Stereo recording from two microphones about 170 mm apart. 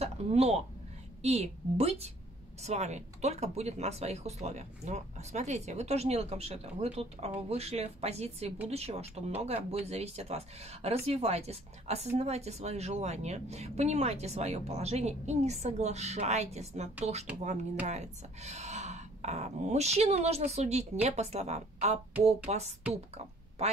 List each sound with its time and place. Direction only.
0.0 s speech: 35° right (ahead or behind)